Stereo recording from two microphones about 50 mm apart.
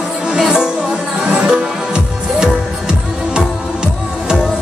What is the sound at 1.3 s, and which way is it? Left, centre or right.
Music, right.